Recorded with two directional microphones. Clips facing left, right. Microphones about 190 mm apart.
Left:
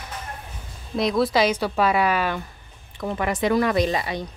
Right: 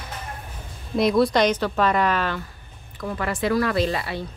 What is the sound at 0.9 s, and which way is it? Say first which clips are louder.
A woman's voice: right 2 dB; centre (ahead or behind).